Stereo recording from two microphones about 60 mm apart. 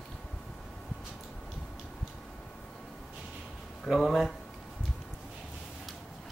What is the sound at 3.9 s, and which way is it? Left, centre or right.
Speech, centre.